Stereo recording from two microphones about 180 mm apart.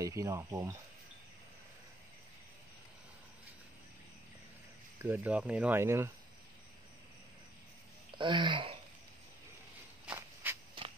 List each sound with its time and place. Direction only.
0.0 s speech: 20° right (ahead or behind)
5.0 s speech: 10° right (ahead or behind)
8.2 s speech: 25° right (ahead or behind)
10.0 s insect: 15° right (ahead or behind)